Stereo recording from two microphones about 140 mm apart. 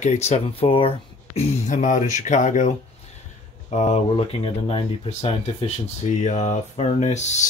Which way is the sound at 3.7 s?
55° left (ahead or behind).